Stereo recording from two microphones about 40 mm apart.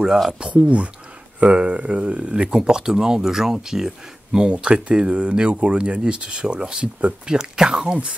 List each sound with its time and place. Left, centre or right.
0.3 s speech: right
2.5 s speech: centre
4.5 s speech: right
7.3 s speech: centre